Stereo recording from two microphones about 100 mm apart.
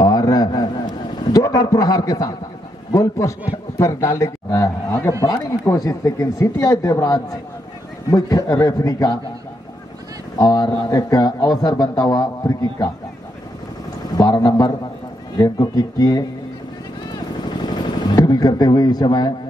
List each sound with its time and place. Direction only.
0.0 s a sound: 40° left (ahead or behind)
2.9 s a man's voice: 30° left (ahead or behind)
10.4 s a man's voice: 40° left (ahead or behind)
14.1 s a sound: 40° left (ahead or behind)
15.4 s a man's voice: 40° left (ahead or behind)
17.6 s vehicle: 45° left (ahead or behind)
19.0 s a man's voice: 45° left (ahead or behind)